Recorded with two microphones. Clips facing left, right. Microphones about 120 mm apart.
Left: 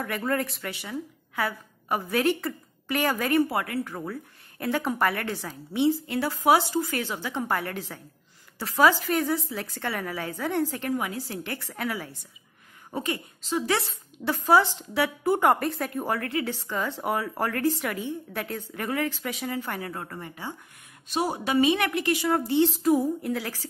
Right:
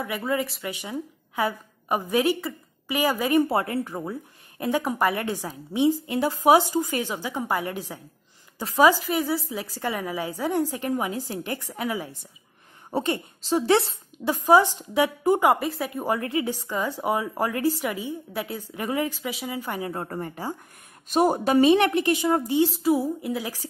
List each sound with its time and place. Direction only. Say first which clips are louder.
0.0 s speech: right 1 dB; 5° right (ahead or behind)
0.7 s a woman's voice: right 2 dB; 15° right (ahead or behind)
3.4 s a woman's voice: right 4 dB; 25° right (ahead or behind)
12.9 s speech: right 5 dB; 30° right (ahead or behind)
14.2 s a woman's voice: right 3 dB; 15° right (ahead or behind)
19.9 s a woman's voice: right 5 dB; 35° right (ahead or behind); by 23.7 s 15° right (ahead or behind)